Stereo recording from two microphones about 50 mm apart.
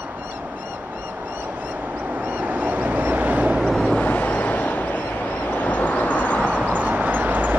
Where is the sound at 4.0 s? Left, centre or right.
Left.